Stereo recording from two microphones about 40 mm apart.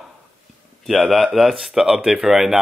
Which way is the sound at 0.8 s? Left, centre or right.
Centre.